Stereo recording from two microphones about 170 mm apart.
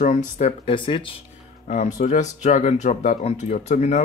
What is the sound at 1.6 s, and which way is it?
Speech, 45° left (ahead or behind).